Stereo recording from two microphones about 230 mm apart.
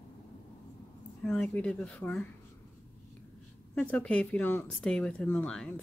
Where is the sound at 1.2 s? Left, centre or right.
Centre.